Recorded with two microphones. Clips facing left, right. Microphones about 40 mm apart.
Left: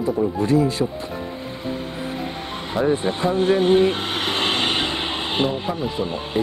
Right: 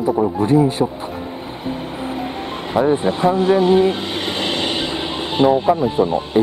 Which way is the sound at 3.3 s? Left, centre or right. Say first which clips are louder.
Right 1 dB; left.